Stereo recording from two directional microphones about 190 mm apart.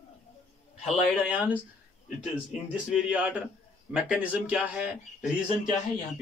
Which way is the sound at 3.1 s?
5° right (ahead or behind).